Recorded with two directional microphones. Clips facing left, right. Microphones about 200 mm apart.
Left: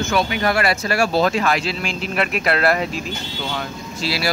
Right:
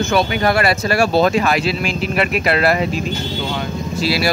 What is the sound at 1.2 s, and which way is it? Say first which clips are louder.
Speech: right 4 dB; 20° right (ahead or behind).